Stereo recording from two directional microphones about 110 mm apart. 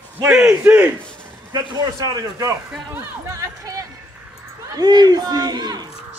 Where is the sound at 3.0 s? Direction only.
30° right (ahead or behind).